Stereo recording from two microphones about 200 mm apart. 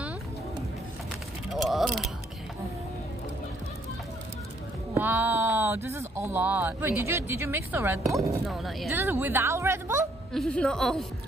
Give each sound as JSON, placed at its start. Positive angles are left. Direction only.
{"t": 1.5, "sound": "mechanisms", "side_deg": 0}
{"t": 4.9, "sound": "speech", "side_deg": -10}
{"t": 8.5, "sound": "a woman's voice", "side_deg": 0}
{"t": 9.0, "sound": "speech", "side_deg": -10}
{"t": 10.3, "sound": "a woman's voice", "side_deg": 5}